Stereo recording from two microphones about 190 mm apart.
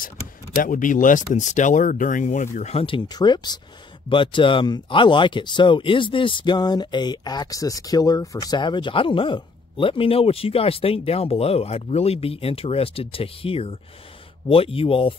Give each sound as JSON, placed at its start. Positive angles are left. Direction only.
{"t": 0.6, "sound": "speech", "side_deg": 45}